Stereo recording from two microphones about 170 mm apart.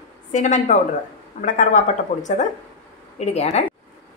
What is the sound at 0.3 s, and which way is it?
A woman's voice, 45° left (ahead or behind).